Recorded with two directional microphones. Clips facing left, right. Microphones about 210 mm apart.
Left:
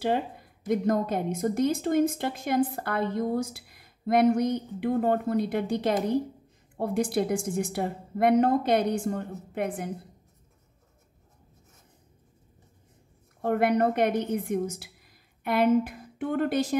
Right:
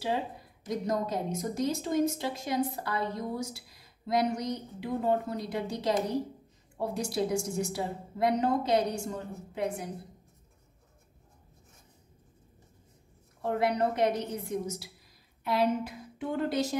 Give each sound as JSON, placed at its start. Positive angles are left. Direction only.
{"t": 0.7, "sound": "a woman's voice", "side_deg": 60}
{"t": 13.4, "sound": "a woman's voice", "side_deg": 60}